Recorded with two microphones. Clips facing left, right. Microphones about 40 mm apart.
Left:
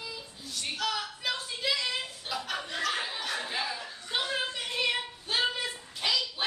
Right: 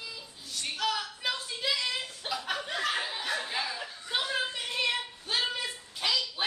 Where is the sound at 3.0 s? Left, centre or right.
Centre.